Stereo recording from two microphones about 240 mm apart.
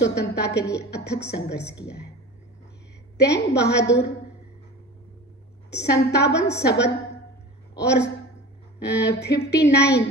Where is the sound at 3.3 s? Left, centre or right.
Left.